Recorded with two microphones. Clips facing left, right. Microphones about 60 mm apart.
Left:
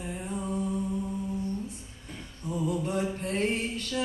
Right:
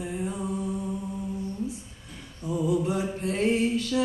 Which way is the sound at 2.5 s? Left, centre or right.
Right.